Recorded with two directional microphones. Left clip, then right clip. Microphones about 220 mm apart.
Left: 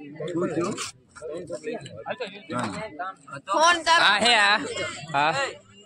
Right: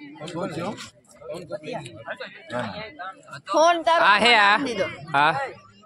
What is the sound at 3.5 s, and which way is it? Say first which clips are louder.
Speech: right 1 dB; 35° right (ahead or behind).